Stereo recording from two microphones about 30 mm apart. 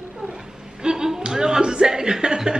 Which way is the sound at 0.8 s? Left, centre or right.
Right.